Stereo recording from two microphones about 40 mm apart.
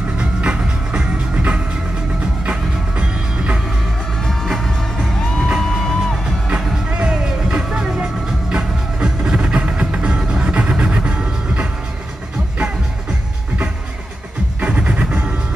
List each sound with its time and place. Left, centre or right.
0.2 s music: right
4.2 s music: centre
6.5 s music: right
14.6 s music: right